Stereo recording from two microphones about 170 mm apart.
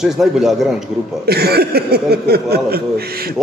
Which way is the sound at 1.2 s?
70° right (ahead or behind).